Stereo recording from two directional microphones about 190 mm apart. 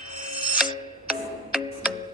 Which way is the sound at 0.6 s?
5° right (ahead or behind).